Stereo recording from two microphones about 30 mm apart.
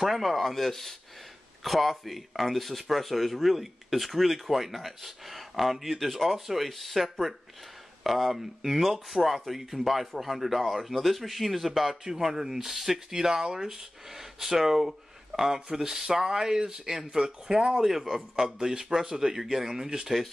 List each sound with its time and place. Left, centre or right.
0.0 s speech: centre
12.0 s speech: centre
13.1 s speech: centre
17.7 s speech: centre